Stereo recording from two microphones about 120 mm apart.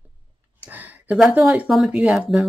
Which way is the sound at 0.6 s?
15° right (ahead or behind).